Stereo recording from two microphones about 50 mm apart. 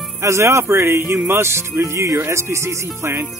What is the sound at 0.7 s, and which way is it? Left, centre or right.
Music, right.